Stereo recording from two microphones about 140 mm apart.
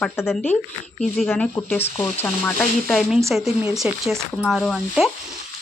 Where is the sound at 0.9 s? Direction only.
5° left (ahead or behind).